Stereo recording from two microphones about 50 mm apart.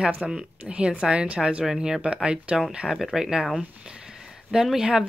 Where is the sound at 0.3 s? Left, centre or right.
Centre.